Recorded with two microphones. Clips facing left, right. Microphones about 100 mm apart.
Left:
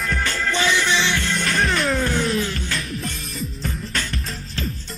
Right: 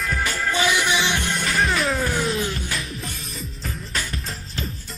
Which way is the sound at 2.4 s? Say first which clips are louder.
Left 1 dB; 20° right (ahead or behind).